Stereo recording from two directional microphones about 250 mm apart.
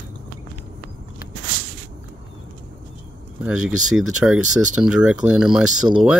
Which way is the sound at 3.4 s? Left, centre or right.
Centre.